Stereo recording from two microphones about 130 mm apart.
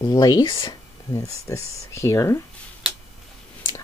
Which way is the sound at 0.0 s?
30° left (ahead or behind).